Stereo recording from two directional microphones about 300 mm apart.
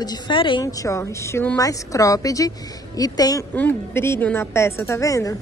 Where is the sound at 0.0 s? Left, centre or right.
Centre.